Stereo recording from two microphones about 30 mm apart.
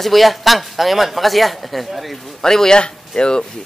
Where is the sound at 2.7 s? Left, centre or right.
Left.